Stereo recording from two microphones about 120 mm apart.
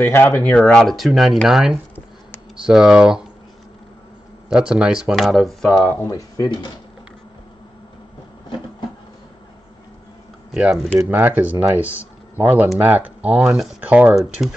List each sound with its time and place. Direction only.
0.0 s speech: 20° left (ahead or behind); by 3.3 s 5° right (ahead or behind)
4.5 s speech: 5° right (ahead or behind)
5.8 s speech: 20° left (ahead or behind)
6.0 s speech: 30° left (ahead or behind)
10.5 s speech: 5° right (ahead or behind)